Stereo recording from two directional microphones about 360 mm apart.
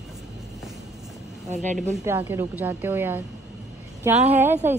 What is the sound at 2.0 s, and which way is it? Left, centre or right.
A woman's voice, centre.